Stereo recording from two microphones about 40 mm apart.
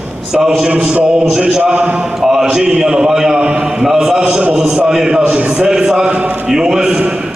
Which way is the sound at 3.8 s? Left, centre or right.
Centre.